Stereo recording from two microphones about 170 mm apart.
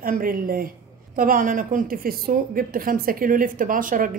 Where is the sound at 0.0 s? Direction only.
55° right (ahead or behind).